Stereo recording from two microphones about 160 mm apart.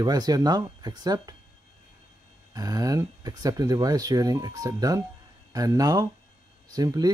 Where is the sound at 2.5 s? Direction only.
25° right (ahead or behind).